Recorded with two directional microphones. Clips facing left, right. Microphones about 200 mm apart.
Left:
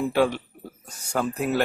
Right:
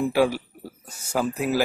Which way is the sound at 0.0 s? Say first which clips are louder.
Right 1 dB; 5° right (ahead or behind).